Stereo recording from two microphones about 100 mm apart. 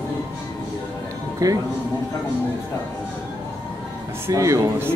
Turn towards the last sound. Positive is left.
turn(degrees=-30)  # may be behind; listen again after turning